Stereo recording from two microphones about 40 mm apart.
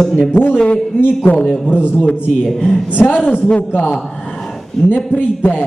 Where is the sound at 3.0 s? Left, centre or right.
Left.